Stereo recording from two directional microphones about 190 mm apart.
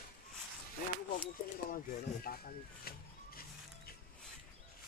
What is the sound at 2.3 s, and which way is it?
Speech, 50° left (ahead or behind).